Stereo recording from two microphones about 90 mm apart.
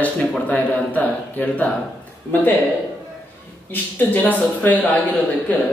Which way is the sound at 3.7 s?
20° left (ahead or behind).